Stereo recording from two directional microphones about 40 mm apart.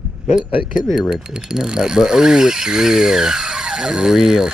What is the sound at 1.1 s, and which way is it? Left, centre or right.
Speech, centre.